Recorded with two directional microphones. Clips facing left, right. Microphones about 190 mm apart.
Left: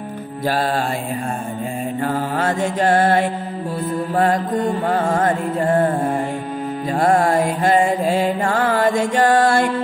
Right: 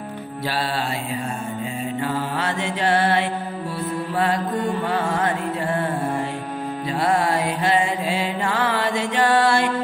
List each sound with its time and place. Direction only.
0.5 s mantra: 45° left (ahead or behind)
2.0 s mantra: 45° left (ahead or behind)
7.0 s mantra: 45° left (ahead or behind)